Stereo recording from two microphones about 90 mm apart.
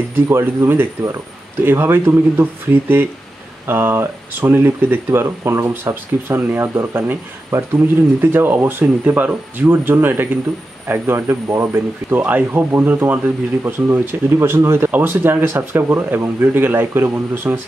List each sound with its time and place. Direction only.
0.1 s speech: 30° right (ahead or behind)